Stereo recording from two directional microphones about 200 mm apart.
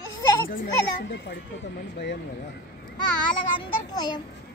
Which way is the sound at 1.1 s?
60° left (ahead or behind).